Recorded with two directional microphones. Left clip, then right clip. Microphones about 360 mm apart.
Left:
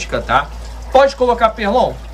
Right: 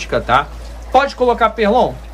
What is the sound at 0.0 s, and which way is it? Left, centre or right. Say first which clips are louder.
A man's voice: right 1 dB; centre.